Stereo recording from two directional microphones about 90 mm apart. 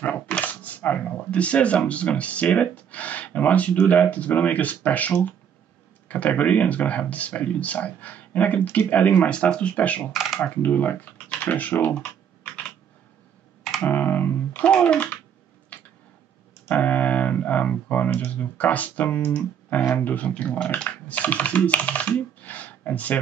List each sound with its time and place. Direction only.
0.0 s speech: 15° left (ahead or behind)
13.8 s computer keyboard: 20° left (ahead or behind)
14.6 s speech: 10° left (ahead or behind)
15.7 s tick-tock: 15° left (ahead or behind)
16.6 s speech: 15° left (ahead or behind)